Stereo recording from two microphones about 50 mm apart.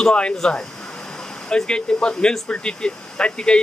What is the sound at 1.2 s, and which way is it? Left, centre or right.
Vehicle, centre.